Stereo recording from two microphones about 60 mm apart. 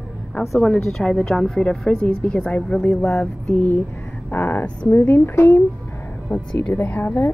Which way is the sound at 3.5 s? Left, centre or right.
Left.